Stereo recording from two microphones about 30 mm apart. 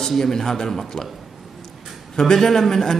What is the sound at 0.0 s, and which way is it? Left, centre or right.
Speech, centre.